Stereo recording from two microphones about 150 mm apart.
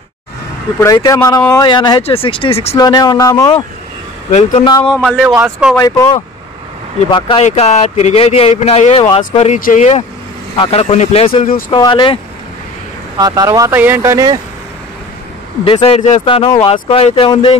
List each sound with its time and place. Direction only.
0.7 s speech: 20° left (ahead or behind)
1.6 s speech: 30° left (ahead or behind)
2.8 s speech: 25° left (ahead or behind)
4.3 s speech: 45° left (ahead or behind)
4.6 s speech: 30° left (ahead or behind)
5.0 s speech: centre (ahead or behind)
5.8 s speech: 25° left (ahead or behind)
7.1 s speech: 35° left (ahead or behind)
7.4 s speech: 50° left (ahead or behind)
9.6 s speech: 65° left (ahead or behind)
10.6 s speech: 40° left (ahead or behind)
13.2 s speech: 25° right (ahead or behind)
15.6 s speech: 35° left (ahead or behind)